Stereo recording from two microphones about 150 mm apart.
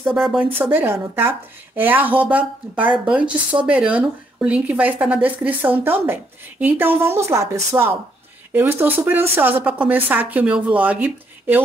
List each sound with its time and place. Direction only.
0.0 s speech: centre (ahead or behind)